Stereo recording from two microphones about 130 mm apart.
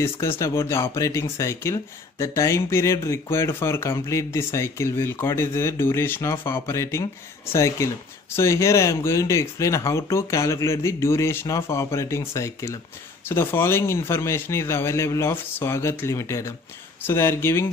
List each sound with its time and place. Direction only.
0.0 s speech: 20° left (ahead or behind)